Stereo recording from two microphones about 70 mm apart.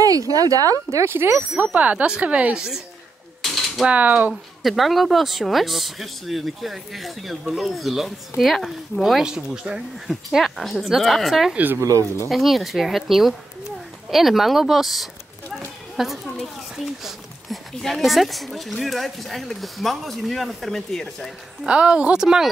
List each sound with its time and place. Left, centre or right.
0.0 s speech: right
1.0 s speech: right
1.5 s speech: right
3.4 s mechanisms: centre
3.8 s speech: centre
4.3 s speech: centre
11.5 s speech: right
11.8 s speech: right
12.3 s speech: centre
21.6 s speech: centre